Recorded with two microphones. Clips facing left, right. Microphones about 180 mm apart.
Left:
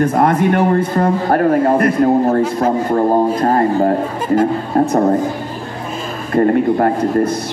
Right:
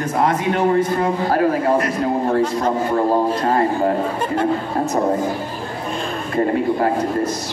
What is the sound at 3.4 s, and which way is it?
Music, 45° left (ahead or behind).